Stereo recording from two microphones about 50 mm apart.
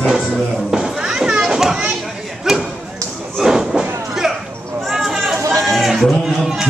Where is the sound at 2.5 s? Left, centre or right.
Centre.